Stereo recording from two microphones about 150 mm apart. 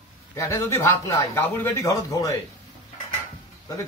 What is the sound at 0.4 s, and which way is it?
A man's voice, 15° left (ahead or behind).